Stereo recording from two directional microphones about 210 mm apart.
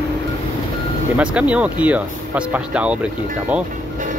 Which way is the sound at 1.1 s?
5° right (ahead or behind).